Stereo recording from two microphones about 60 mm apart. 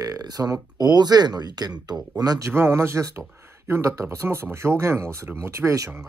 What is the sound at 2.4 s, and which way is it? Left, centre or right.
Speech, right.